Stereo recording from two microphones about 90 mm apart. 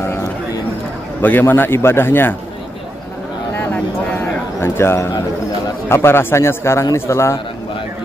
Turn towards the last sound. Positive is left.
turn(degrees=30)  # may be behind; listen again after turning